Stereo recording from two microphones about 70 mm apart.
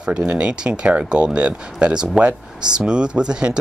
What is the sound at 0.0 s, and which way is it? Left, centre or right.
Speech, centre.